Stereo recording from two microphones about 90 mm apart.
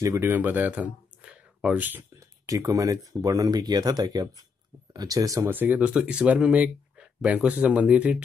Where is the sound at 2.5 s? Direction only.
40° right (ahead or behind).